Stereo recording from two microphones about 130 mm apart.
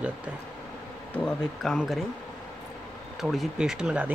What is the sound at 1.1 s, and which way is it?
Speech, 5° left (ahead or behind).